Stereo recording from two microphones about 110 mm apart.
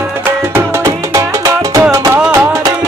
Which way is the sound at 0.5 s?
25° right (ahead or behind).